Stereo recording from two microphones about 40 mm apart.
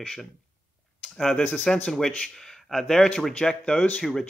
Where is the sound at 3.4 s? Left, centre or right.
Centre.